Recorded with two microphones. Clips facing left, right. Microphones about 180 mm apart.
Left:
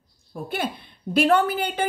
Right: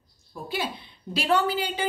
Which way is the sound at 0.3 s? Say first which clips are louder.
Left 3 dB; 55° left (ahead or behind).